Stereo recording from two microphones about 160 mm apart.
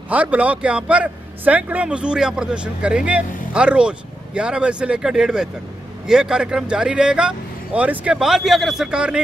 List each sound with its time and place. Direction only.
0.1 s speech: 10° right (ahead or behind)